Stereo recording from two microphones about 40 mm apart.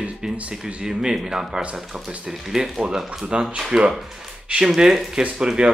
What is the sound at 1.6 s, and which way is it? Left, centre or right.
Speech, right.